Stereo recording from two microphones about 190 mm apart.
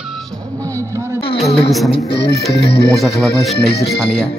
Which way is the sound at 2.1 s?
60° left (ahead or behind).